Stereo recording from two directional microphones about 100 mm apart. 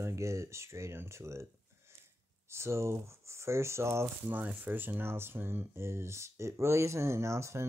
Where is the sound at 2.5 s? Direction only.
25° right (ahead or behind).